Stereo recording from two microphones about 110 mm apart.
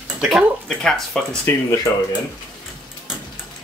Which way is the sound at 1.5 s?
20° left (ahead or behind).